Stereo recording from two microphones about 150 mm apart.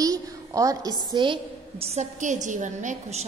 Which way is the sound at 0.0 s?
25° right (ahead or behind).